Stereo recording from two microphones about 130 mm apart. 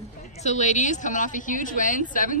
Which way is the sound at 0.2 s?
65° left (ahead or behind).